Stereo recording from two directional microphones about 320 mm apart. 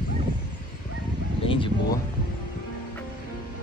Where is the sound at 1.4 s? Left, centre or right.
Centre.